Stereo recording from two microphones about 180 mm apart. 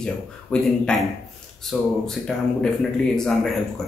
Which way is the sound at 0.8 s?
5° left (ahead or behind).